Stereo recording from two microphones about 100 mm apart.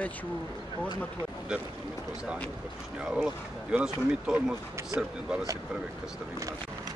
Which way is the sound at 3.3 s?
5° right (ahead or behind).